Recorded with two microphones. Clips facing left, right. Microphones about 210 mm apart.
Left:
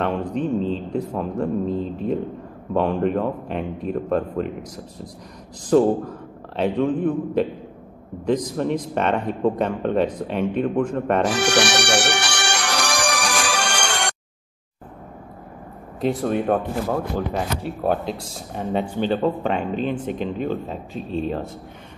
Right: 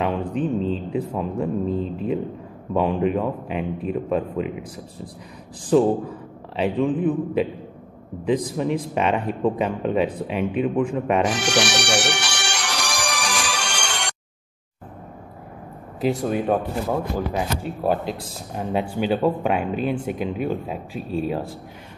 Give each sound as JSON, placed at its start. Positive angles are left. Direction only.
{"t": 0.0, "sound": "speech", "side_deg": -5}
{"t": 8.5, "sound": "speech", "side_deg": -5}
{"t": 11.3, "sound": "music", "side_deg": 60}
{"t": 16.0, "sound": "speech", "side_deg": 0}